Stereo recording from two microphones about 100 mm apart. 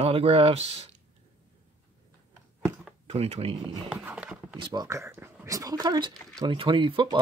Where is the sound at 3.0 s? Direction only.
90° right.